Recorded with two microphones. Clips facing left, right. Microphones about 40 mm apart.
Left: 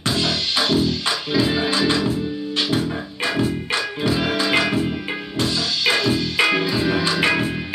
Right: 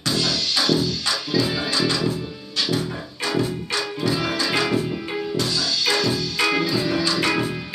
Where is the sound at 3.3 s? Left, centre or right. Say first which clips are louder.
Left 2 dB; left.